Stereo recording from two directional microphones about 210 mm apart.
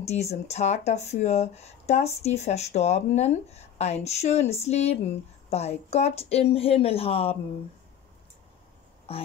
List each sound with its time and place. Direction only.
0.0 s a woman's voice: 30° left (ahead or behind)
9.1 s speech: 30° left (ahead or behind)